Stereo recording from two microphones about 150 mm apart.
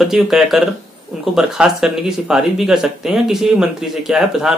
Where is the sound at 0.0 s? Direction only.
Centre (ahead or behind).